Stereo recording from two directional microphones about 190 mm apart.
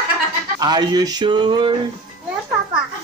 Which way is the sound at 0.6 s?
20° right (ahead or behind).